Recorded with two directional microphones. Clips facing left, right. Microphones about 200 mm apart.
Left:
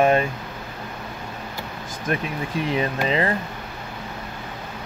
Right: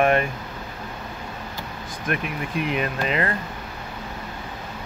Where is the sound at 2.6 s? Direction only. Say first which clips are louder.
Left 2 dB; 30° left (ahead or behind).